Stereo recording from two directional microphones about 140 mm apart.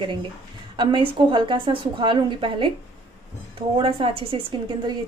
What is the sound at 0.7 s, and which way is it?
A woman's voice, 35° right (ahead or behind).